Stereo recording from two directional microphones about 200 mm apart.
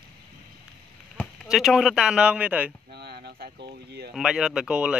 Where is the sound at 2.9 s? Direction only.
55° right (ahead or behind).